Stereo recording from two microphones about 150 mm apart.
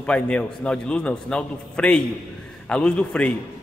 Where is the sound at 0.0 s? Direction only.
5° left (ahead or behind).